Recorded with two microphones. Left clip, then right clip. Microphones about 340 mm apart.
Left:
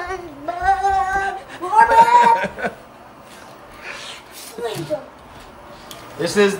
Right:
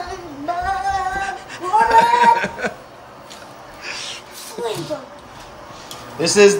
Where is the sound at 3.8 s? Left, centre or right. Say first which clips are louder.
Right 3 dB; centre.